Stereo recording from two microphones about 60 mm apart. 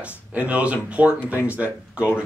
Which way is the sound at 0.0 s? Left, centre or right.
Right.